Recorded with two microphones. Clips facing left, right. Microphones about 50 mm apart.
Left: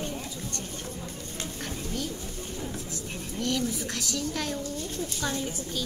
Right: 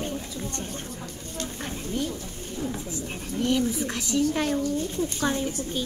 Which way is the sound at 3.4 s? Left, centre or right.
Centre.